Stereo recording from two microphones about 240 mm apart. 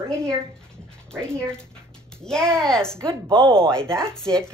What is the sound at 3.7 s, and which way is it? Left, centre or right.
Speech, centre.